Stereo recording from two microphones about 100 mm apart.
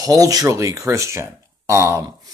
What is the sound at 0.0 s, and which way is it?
Speech, 35° right (ahead or behind).